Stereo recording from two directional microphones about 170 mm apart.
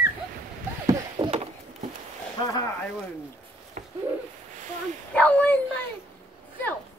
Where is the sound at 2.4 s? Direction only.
25° left (ahead or behind).